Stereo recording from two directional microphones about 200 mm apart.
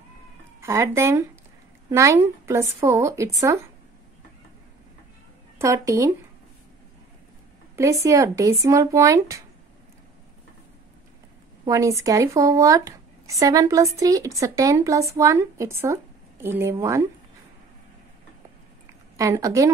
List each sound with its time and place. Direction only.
0.6 s speech: 15° right (ahead or behind)
5.6 s speech: 15° right (ahead or behind)
7.7 s speech: 15° right (ahead or behind)
11.6 s speech: 15° right (ahead or behind)
19.1 s speech: 15° right (ahead or behind)